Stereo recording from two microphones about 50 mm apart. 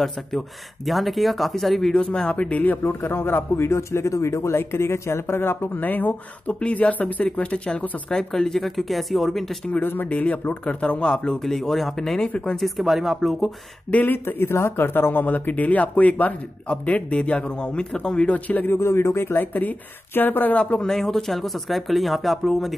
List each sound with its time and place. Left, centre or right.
0.8 s speech: centre
2.0 s speech: centre
2.3 s speech: left
2.8 s a man's voice: left
4.6 s a man's voice: left
5.8 s speech: left; by 9.4 s centre
9.8 s speech: left; by 11.3 s centre
11.4 s speech: centre
14.0 s speech: left
18.7 s speech: left
20.8 s speech: centre